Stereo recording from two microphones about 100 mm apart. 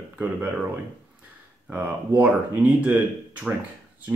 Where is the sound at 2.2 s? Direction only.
15° right (ahead or behind).